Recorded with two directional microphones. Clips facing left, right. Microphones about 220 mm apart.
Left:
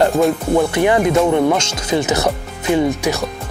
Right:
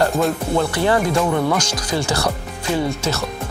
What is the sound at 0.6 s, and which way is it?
Speech, 20° left (ahead or behind).